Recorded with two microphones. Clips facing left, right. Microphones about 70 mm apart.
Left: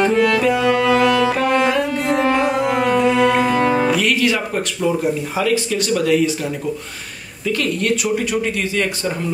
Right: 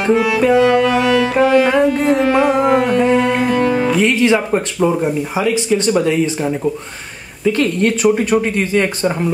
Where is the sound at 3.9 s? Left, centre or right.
Right.